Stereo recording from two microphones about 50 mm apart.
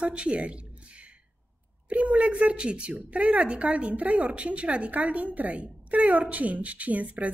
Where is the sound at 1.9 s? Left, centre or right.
Right.